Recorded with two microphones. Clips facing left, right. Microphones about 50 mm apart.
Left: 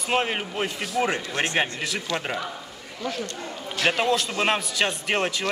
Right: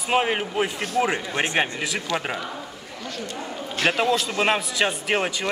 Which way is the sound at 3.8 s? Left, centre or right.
Centre.